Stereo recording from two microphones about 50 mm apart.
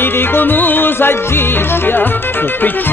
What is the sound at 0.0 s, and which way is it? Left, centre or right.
Music, left.